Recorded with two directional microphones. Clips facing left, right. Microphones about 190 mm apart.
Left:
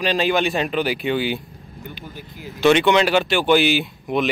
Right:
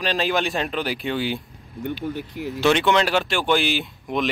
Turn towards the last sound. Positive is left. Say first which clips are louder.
# left 3 dB
turn(degrees=5)  # may be behind; listen again after turning